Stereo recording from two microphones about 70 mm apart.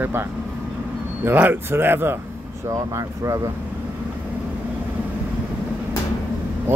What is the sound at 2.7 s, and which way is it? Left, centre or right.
Speech, right.